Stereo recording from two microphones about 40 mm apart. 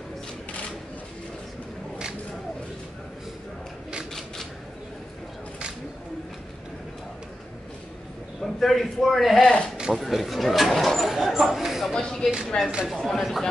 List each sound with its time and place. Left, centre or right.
8.4 s a man's voice: centre
11.9 s speech: centre